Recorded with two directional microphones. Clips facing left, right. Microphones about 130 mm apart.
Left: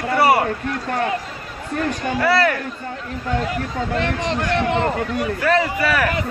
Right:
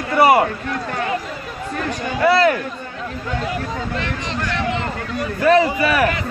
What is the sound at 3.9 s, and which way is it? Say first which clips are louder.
Speech: left 4 dB; 55° left (ahead or behind).